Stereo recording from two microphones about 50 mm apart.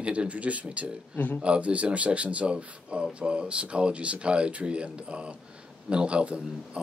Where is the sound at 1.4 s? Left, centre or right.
Right.